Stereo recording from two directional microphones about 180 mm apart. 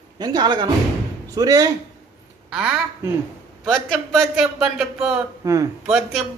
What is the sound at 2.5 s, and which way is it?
Speech, 5° right (ahead or behind).